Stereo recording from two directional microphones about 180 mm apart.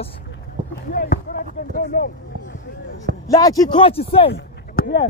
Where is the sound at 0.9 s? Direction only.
55° left (ahead or behind).